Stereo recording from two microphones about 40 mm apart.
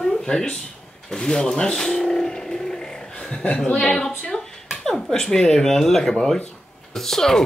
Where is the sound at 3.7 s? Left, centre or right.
Centre.